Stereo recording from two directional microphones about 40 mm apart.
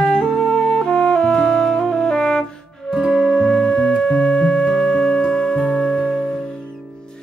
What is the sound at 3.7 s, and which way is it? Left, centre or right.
Music, centre.